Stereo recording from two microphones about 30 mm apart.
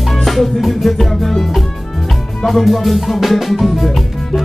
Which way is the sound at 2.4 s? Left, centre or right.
Centre.